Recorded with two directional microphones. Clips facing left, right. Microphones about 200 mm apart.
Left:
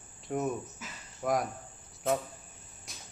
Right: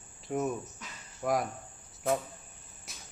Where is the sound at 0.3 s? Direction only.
Centre (ahead or behind).